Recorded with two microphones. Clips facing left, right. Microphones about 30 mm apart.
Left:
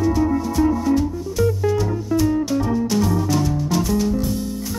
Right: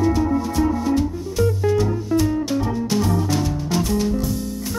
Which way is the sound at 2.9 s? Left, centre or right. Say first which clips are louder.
Right 2 dB; centre.